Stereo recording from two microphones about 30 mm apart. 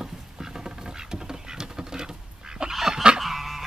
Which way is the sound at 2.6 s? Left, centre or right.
Right.